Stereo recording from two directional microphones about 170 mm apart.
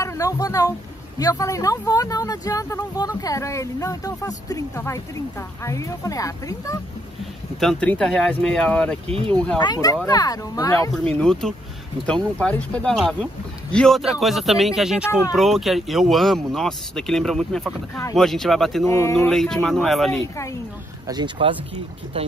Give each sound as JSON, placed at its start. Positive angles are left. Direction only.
{"t": 0.0, "sound": "speech", "side_deg": 20}
{"t": 7.6, "sound": "speech", "side_deg": 5}
{"t": 9.0, "sound": "speech", "side_deg": -35}
{"t": 9.3, "sound": "speech", "side_deg": 5}
{"t": 9.6, "sound": "speech", "side_deg": 25}
{"t": 11.1, "sound": "speech", "side_deg": 5}
{"t": 18.9, "sound": "speech", "side_deg": 20}
{"t": 19.1, "sound": "speech", "side_deg": 5}
{"t": 21.1, "sound": "speech", "side_deg": -30}